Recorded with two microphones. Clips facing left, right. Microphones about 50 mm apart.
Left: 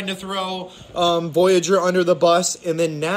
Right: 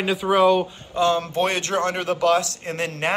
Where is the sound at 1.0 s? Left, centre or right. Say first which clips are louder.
Left 3 dB; right.